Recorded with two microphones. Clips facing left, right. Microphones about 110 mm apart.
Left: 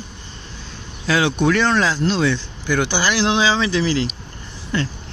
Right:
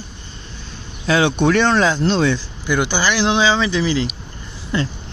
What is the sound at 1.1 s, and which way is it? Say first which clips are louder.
Speech: right 2 dB; 25° right (ahead or behind).